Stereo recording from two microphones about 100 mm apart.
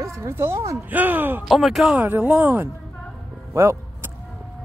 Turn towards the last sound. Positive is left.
turn(degrees=-25)  # may be behind; listen again after turning